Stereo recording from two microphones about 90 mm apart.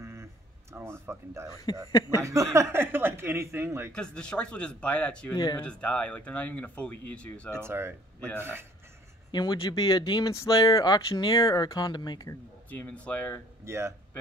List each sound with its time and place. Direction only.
0.0 s a sound: 30° right (ahead or behind)
0.7 s speech: 25° right (ahead or behind)
1.9 s speech: 45° left (ahead or behind)
2.2 s speech: 35° right (ahead or behind)
3.9 s speech: 10° left (ahead or behind)
5.3 s speech: 45° left (ahead or behind)
5.6 s speech: 15° left (ahead or behind)
7.6 s speech: 25° right (ahead or behind)
9.3 s speech: 55° left (ahead or behind)
10.3 s speech: 35° left (ahead or behind)
11.1 s speech: 55° left (ahead or behind)
11.3 s speech: 45° left (ahead or behind)
12.6 s speech: 15° left (ahead or behind)
13.7 s speech: 30° right (ahead or behind)